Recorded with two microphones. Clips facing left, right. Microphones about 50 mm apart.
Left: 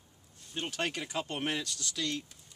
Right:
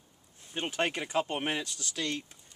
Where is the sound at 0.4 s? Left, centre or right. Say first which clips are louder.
Right 4 dB; right.